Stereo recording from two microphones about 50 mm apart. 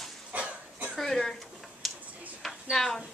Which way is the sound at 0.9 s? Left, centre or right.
Centre.